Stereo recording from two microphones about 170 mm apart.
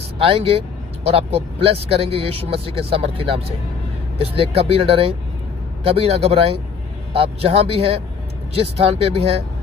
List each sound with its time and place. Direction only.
0.2 s speech: 35° right (ahead or behind)